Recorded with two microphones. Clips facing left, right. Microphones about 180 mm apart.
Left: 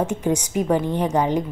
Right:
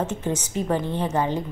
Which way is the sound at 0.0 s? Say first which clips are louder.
Left 4 dB; 15° left (ahead or behind).